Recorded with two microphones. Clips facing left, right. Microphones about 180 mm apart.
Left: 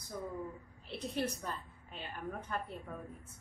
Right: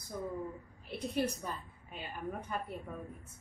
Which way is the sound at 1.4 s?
10° right (ahead or behind).